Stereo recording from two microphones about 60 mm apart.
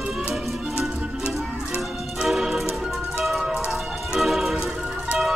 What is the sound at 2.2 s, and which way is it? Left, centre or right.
Music, centre.